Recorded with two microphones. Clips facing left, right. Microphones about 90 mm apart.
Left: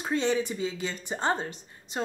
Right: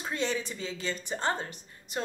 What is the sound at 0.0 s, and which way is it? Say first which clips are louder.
A woman's voice: left 5 dB; 20° left (ahead or behind).